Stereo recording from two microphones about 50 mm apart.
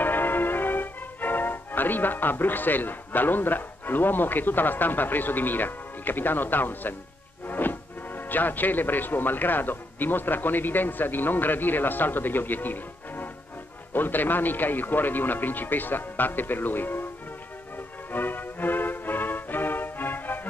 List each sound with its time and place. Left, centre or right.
0.0 s music: left
7.4 s speech: left
17.7 s music: left